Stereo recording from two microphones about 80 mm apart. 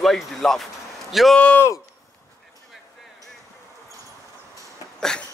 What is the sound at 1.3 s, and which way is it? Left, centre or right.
Speech, centre.